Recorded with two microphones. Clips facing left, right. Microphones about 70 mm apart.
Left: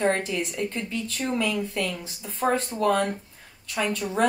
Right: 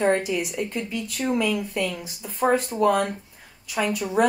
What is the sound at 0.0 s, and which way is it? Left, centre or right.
Speech, centre.